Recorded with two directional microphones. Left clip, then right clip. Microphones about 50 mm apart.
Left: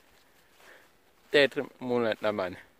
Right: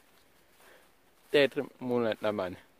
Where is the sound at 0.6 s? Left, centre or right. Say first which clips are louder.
Left 4 dB; centre.